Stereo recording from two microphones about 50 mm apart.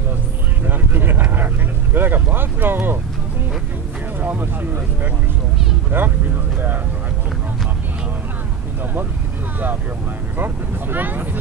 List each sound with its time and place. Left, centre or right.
0.7 s vehicle: right
2.0 s speech: right
4.2 s speech: right
5.9 s speech: right
10.3 s speech: right